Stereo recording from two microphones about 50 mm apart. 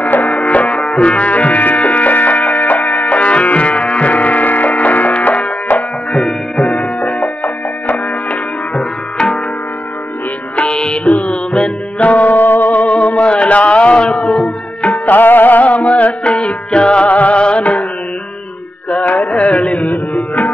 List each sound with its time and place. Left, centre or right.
0.0 s music: left
10.5 s music: centre
14.9 s music: left
18.9 s music: left